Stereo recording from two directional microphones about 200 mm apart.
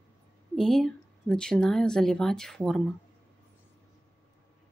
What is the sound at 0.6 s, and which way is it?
Speech, centre (ahead or behind).